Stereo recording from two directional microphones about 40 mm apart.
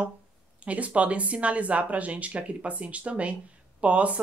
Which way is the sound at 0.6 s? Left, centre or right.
Right.